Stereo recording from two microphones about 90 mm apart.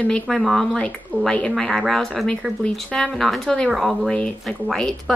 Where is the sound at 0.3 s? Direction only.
Centre (ahead or behind).